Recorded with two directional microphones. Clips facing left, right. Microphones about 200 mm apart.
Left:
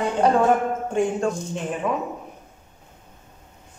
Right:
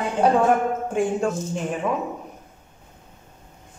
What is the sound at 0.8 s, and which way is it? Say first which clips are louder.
Speech: left 2 dB; centre (ahead or behind).